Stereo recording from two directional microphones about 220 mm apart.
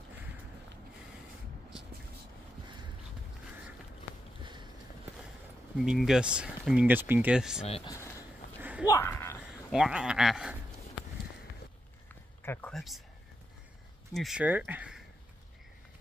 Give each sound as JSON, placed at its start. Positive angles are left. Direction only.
{"t": 4.4, "sound": "a sound", "side_deg": -20}
{"t": 5.8, "sound": "speech", "side_deg": 0}
{"t": 7.6, "sound": "speech", "side_deg": 25}
{"t": 8.2, "sound": "a sound", "side_deg": -10}
{"t": 8.8, "sound": "speech", "side_deg": 10}
{"t": 9.7, "sound": "speech", "side_deg": -5}
{"t": 12.4, "sound": "speech", "side_deg": 5}
{"t": 14.1, "sound": "speech", "side_deg": 0}